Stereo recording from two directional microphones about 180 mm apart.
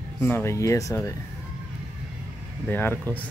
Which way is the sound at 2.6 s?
10° left (ahead or behind).